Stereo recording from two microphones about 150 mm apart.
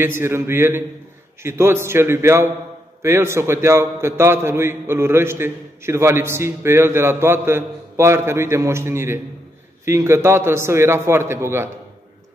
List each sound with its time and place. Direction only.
0.0 s a man's voice: 15° right (ahead or behind)